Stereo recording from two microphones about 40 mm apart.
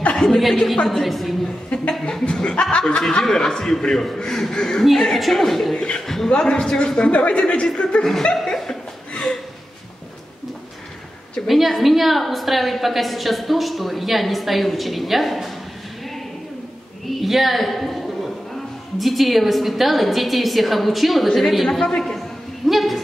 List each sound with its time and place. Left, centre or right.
0.1 s chuckle: centre
0.8 s a woman's voice: centre
1.7 s speech: left
3.0 s a man's voice: centre
5.8 s speech: left
6.0 s a man's voice: centre
6.3 s speech: left
8.0 s a man's voice: centre
11.4 s a woman's voice: centre
17.0 s a woman's voice: centre
21.6 s speech: centre
22.7 s a woman's voice: centre